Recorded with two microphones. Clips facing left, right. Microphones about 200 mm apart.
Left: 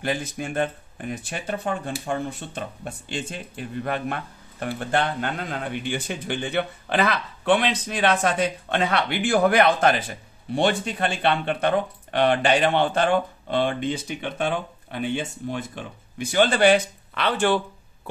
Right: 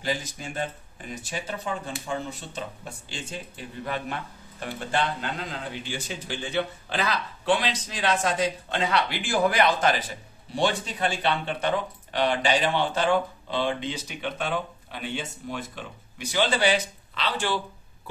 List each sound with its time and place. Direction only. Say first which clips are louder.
0.0 s speech: left 4 dB; 60° left (ahead or behind)